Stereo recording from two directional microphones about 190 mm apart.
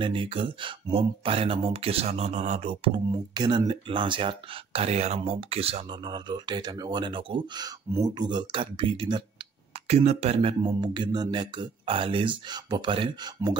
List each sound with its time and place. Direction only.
0.0 s speech: 25° right (ahead or behind)